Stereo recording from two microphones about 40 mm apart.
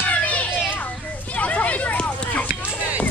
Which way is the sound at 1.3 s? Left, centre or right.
Left.